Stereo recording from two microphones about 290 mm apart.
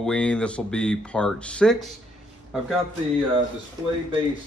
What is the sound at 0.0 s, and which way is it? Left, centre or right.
Speech, centre.